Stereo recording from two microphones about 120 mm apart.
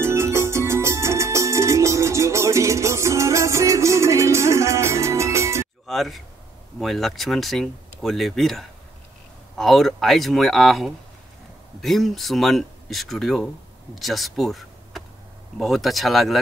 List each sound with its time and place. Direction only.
0.0 s music: 20° right (ahead or behind)
5.9 s speech: centre (ahead or behind)